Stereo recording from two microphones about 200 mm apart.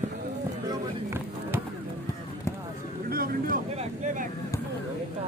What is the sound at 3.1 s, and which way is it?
Vehicle, 45° right (ahead or behind).